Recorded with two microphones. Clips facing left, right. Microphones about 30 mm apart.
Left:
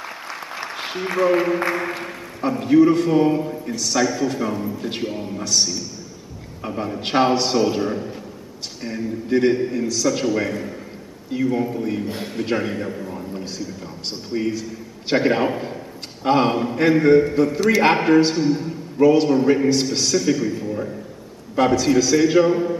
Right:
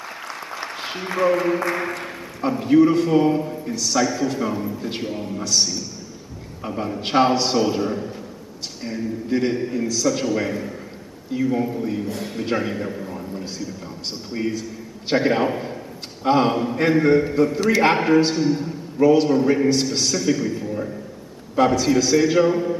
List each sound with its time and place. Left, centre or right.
0.0 s applause: centre
2.0 s a man's voice: centre
9.3 s a man's voice: centre
9.6 s a man's voice: centre
11.7 s a man's voice: centre